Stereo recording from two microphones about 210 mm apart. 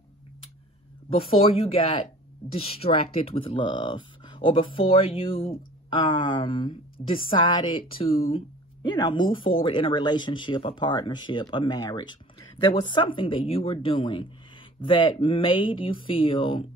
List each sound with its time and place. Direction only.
1.3 s speech: 25° left (ahead or behind)